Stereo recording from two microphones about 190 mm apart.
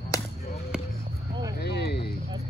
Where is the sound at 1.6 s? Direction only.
60° left (ahead or behind).